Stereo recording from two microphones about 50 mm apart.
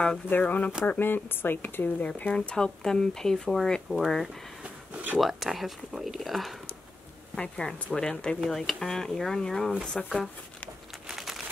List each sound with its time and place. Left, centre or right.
0.3 s speech: left
2.0 s speech: left
2.3 s speech: centre
4.9 s speech: right
5.2 s speech: centre
7.3 s speech: centre
11.1 s crumpling: centre